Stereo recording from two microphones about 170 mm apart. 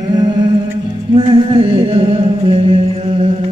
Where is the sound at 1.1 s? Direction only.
30° right (ahead or behind).